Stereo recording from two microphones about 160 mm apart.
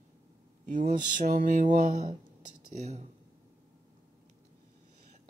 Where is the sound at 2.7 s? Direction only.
45° right (ahead or behind).